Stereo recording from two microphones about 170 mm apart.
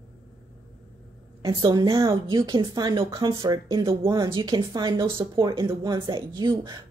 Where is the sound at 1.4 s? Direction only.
25° right (ahead or behind).